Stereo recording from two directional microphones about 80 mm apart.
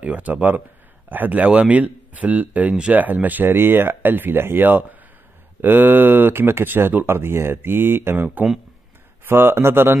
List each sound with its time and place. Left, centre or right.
0.0 s speech: centre